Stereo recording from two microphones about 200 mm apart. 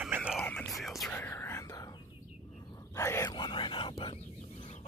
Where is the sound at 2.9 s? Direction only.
15° left (ahead or behind).